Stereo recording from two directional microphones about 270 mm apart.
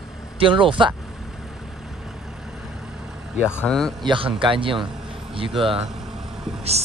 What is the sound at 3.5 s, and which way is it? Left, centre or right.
Speech, centre.